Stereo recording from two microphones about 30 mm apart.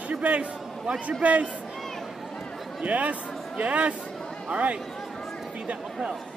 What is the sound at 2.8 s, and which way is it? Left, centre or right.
Speech, right.